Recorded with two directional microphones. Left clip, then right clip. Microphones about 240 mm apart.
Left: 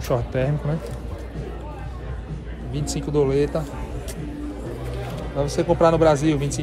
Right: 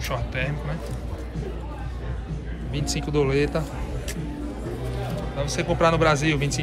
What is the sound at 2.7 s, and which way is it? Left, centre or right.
Speech, centre.